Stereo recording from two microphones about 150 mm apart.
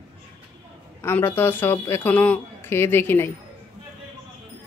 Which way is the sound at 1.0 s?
15° left (ahead or behind).